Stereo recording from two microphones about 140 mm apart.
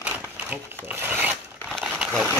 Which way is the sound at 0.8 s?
15° right (ahead or behind).